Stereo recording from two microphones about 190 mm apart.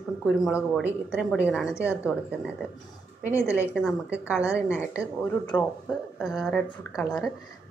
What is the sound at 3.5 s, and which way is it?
Speech, 5° right (ahead or behind).